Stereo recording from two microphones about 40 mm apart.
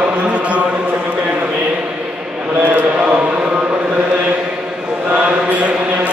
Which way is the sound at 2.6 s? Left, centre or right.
Right.